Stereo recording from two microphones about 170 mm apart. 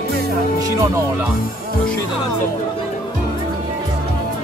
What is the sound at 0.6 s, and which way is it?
Music, 15° right (ahead or behind).